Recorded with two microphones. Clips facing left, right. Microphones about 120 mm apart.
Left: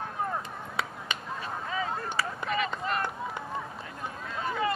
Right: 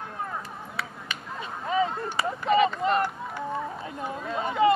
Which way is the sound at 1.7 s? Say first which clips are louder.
Right 8 dB; 20° right (ahead or behind).